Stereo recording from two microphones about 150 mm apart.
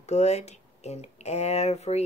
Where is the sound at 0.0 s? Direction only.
50° left (ahead or behind).